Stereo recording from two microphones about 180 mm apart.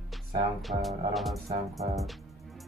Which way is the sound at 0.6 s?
Centre (ahead or behind).